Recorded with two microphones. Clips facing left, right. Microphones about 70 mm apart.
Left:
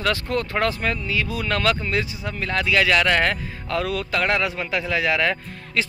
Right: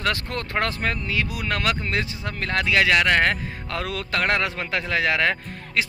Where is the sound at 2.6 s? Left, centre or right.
Right.